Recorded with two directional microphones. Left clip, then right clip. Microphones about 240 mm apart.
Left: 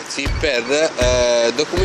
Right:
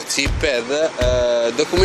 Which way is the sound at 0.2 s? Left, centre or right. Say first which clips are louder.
Even; centre.